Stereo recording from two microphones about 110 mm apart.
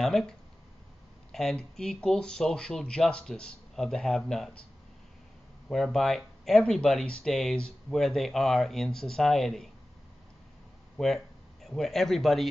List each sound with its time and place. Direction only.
0.0 s speech: 5° left (ahead or behind)
5.7 s speech: 5° left (ahead or behind)
11.0 s speech: 5° left (ahead or behind)